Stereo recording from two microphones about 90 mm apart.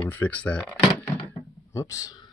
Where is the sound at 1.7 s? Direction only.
40° left (ahead or behind).